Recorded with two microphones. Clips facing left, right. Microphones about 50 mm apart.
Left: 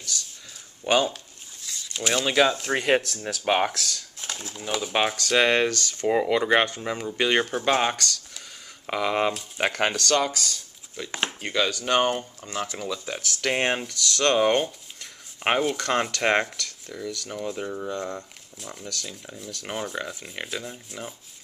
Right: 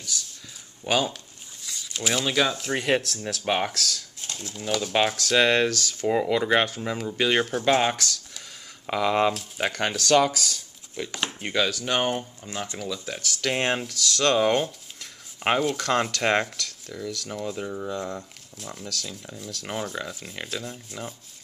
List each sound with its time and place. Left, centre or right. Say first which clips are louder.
0.8 s speech: left 2 dB; centre
1.7 s a sound: even; centre
2.0 s speech: left 1 dB; centre
2.5 s speech: left 2 dB; left
2.8 s speech: left 1 dB; centre
4.2 s a sound: left 1 dB; left
4.6 s speech: right 1 dB; centre
6.0 s speech: left 1 dB; centre
8.8 s speech: right 2 dB; centre
9.9 s speech: right 3 dB; centre
12.7 s speech: left 1 dB; centre